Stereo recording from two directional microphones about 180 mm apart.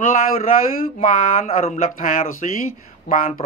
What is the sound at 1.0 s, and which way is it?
Speech, 40° left (ahead or behind).